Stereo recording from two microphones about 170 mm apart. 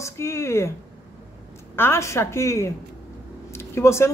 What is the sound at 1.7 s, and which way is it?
Speech, 15° left (ahead or behind).